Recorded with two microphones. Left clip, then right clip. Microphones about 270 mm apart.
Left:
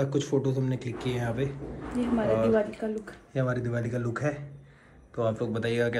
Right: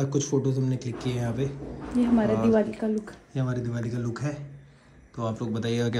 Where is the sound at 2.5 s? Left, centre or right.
Right.